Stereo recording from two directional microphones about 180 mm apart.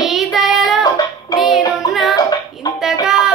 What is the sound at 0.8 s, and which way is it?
Music, 20° left (ahead or behind).